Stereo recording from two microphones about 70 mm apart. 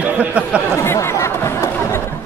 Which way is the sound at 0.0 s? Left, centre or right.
Centre.